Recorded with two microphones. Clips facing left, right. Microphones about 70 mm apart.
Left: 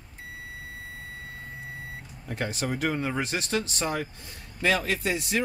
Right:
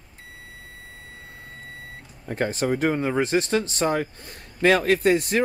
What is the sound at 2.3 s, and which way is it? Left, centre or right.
Speech, right.